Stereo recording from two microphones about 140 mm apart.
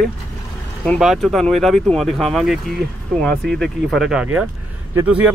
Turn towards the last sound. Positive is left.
turn(degrees=-10)  # may be behind; listen again after turning